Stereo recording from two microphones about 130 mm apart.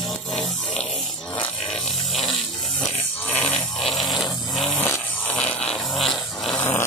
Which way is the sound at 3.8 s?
Centre (ahead or behind).